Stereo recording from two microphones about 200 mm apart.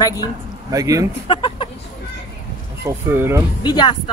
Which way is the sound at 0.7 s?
15° right (ahead or behind).